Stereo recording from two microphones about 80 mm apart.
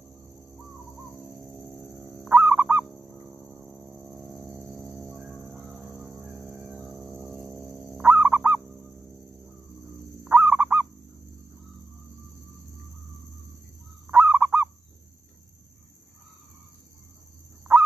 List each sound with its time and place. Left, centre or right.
1.3 s a sound: centre
2.3 s fowl: right
2.8 s bird: centre
4.0 s a sound: centre
5.5 s music: centre
6.1 s music: centre
6.8 s a sound: centre
7.6 s music: centre
8.1 s owl: right
8.6 s fowl: centre
10.2 s fowl: right
14.1 s goose: right
17.7 s honk: right